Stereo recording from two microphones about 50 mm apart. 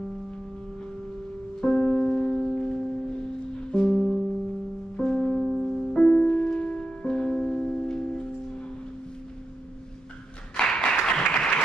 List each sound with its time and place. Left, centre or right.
1.6 s music: centre
10.5 s applause: centre